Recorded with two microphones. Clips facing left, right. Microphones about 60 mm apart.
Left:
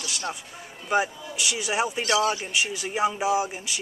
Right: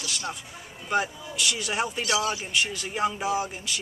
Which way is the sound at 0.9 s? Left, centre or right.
Centre.